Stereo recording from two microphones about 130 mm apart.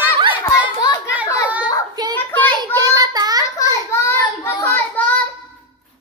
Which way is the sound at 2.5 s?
30° right (ahead or behind).